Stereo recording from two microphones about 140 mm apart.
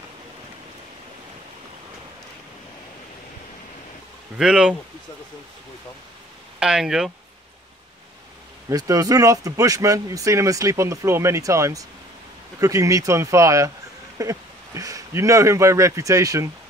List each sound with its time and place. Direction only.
4.4 s speech: 5° right (ahead or behind)
6.6 s speech: 5° right (ahead or behind)
8.6 s speech: 25° right (ahead or behind)